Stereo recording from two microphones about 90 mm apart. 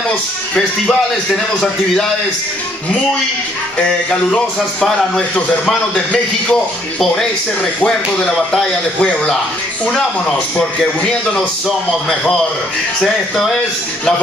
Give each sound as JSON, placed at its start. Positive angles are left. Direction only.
{"t": 0.6, "sound": "a man's voice", "side_deg": 10}
{"t": 3.7, "sound": "a man's voice", "side_deg": 10}
{"t": 8.5, "sound": "a man's voice", "side_deg": 10}